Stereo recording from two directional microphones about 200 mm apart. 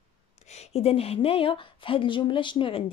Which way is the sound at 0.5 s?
30° left (ahead or behind).